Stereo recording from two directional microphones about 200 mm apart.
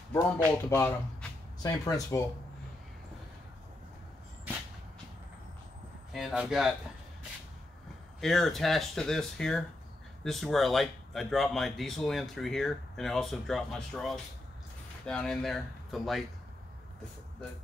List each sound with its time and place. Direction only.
0.1 s speech: 10° left (ahead or behind)
6.1 s speech: 5° right (ahead or behind)
8.2 s speech: centre (ahead or behind)